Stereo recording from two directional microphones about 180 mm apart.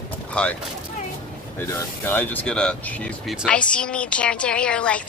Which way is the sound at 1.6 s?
15° left (ahead or behind).